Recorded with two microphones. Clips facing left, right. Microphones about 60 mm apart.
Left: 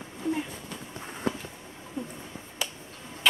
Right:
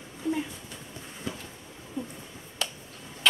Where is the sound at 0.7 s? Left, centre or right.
Left.